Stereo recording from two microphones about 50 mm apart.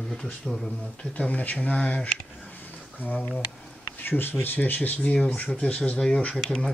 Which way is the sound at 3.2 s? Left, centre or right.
Centre.